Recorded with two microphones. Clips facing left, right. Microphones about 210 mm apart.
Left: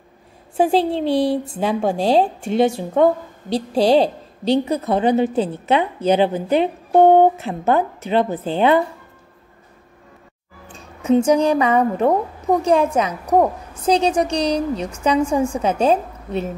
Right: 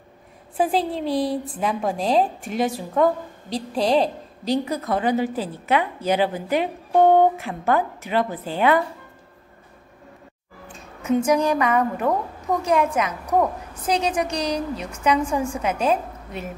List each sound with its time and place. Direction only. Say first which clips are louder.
0.6 s a woman's voice: left 5 dB; 30° left (ahead or behind)
11.0 s a woman's voice: left 4 dB; 30° left (ahead or behind)